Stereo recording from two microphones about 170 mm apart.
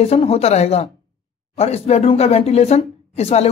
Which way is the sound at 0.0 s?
35° left (ahead or behind).